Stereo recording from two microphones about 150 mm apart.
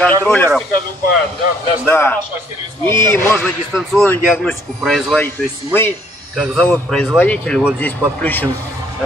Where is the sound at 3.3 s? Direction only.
5° left (ahead or behind).